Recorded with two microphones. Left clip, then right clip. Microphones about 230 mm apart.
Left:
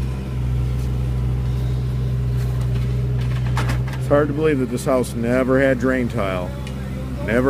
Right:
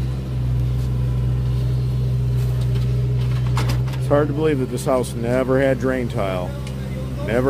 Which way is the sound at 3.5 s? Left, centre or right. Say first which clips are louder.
Left 1 dB; centre.